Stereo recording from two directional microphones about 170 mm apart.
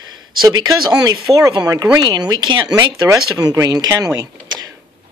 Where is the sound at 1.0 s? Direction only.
20° right (ahead or behind).